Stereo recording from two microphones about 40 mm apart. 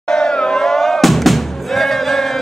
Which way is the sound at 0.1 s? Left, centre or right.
Centre.